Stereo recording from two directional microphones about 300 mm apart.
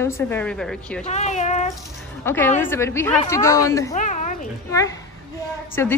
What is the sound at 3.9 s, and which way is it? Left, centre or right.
Speech, left.